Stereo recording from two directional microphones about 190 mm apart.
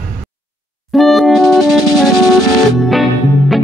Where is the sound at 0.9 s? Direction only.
Centre (ahead or behind).